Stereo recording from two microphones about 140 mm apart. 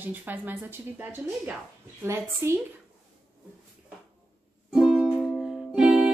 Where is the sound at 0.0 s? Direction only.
15° right (ahead or behind).